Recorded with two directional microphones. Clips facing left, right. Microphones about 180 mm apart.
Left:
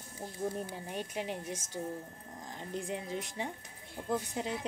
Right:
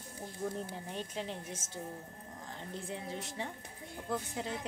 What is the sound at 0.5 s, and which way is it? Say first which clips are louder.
A woman's voice: left 2 dB; 15° left (ahead or behind).